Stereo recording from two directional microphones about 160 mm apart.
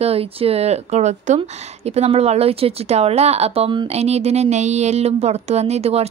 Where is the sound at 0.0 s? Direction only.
40° right (ahead or behind).